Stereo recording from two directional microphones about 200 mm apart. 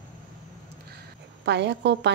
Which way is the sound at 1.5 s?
60° right (ahead or behind).